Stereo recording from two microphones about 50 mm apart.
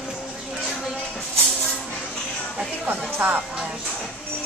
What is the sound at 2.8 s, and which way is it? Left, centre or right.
Speech, right.